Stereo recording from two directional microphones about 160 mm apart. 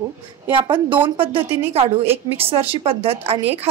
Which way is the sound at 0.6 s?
30° right (ahead or behind).